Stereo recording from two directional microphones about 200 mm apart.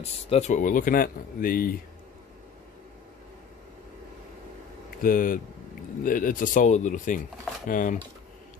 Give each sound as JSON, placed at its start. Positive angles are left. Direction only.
{"t": 0.0, "sound": "speech", "side_deg": 35}
{"t": 5.0, "sound": "speech", "side_deg": 45}